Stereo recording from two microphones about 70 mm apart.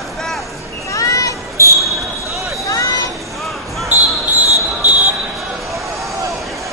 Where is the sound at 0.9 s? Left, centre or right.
Left.